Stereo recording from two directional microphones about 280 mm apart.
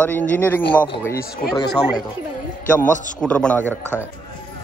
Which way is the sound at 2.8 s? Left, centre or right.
Left.